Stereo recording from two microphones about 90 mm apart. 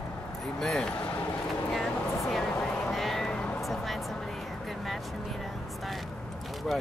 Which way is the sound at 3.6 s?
Centre (ahead or behind).